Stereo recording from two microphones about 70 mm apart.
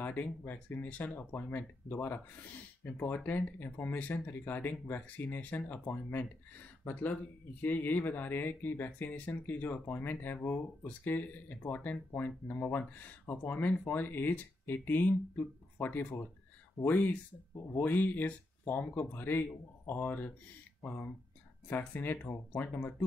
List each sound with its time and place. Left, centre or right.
0.0 s speech: left